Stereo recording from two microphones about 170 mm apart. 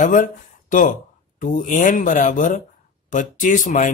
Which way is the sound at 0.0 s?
50° left (ahead or behind).